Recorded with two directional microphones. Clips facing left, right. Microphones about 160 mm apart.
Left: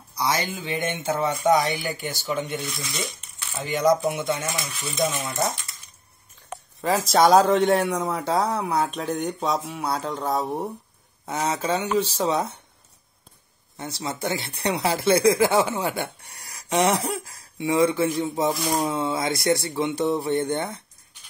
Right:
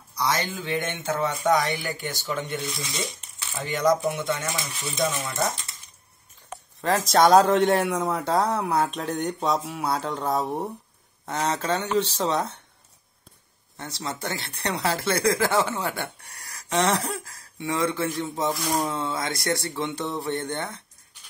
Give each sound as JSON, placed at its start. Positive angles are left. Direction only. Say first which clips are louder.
{"t": 0.1, "sound": "speech", "louder": "left 1 dB", "side_deg": 10}
{"t": 2.8, "sound": "speech", "louder": "even", "side_deg": -25}
{"t": 3.7, "sound": "speech", "louder": "left 2 dB", "side_deg": 10}
{"t": 4.9, "sound": "speech", "louder": "left 1 dB", "side_deg": 20}
{"t": 6.8, "sound": "speech", "louder": "left 1 dB", "side_deg": 0}
{"t": 13.7, "sound": "speech", "louder": "left 2 dB", "side_deg": 10}